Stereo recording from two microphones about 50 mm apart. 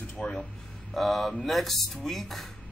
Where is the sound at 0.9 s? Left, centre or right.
Centre.